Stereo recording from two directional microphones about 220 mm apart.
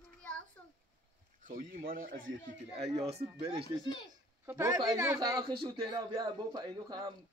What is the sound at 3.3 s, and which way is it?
Speech, 25° right (ahead or behind).